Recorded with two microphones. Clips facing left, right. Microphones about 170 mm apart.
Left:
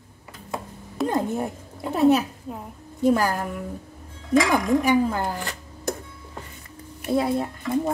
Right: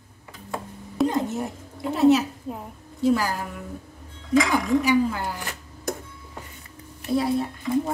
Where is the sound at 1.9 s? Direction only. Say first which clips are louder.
Right 1 dB; 55° left (ahead or behind).